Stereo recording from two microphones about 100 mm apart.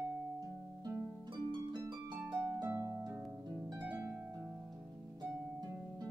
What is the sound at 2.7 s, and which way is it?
Harp, 30° right (ahead or behind).